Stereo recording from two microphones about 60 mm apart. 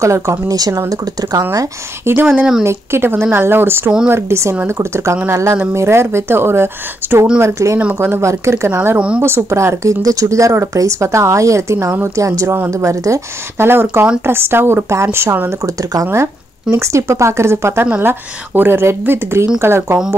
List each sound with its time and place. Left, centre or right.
0.0 s speech: right
2.0 s speech: right
2.6 s speech: right
4.1 s speech: right
8.9 s speech: centre
9.2 s speech: right
10.0 s speech: right
12.2 s speech: right
13.6 s speech: right
15.6 s speech: right
16.7 s speech: right
18.0 s speech: right